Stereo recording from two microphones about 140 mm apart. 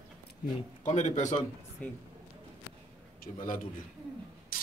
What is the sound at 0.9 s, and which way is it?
Speech, 55° left (ahead or behind).